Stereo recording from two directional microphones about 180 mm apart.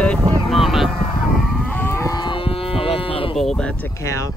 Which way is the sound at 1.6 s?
10° left (ahead or behind).